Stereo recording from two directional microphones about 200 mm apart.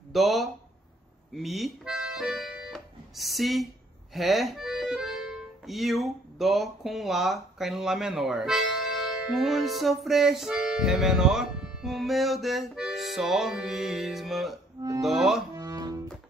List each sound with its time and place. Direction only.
0.1 s speech: centre (ahead or behind)
1.3 s accordion: centre (ahead or behind)
4.1 s speech: centre (ahead or behind)
9.3 s music: centre (ahead or behind)
15.5 s music: 15° right (ahead or behind)